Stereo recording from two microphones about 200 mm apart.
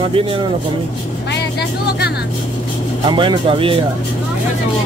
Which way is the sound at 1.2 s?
55° left (ahead or behind).